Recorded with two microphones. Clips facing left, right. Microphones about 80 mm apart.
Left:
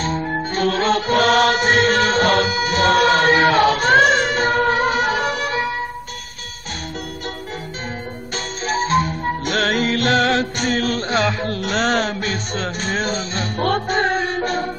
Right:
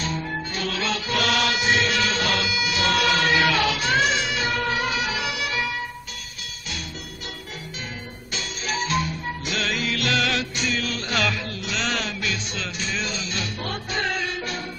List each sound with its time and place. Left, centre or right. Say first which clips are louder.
0.0 s music: left 6 dB; left
8.6 s music: left 7 dB; left
11.1 s music: left 3 dB; left
11.4 s music: left 8 dB; left